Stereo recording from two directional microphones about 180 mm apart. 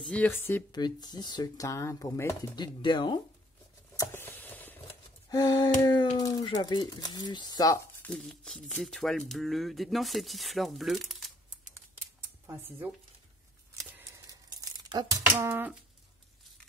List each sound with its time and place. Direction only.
0.0 s speech: 10° left (ahead or behind)
0.7 s speech: 25° left (ahead or behind)
3.9 s a sound: 15° left (ahead or behind)
5.3 s speech: 20° left (ahead or behind)
8.0 s speech: 5° left (ahead or behind)
12.4 s speech: 10° right (ahead or behind)
13.7 s tearing: 10° right (ahead or behind)